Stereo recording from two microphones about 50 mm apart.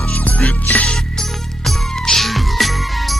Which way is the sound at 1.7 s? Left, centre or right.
Centre.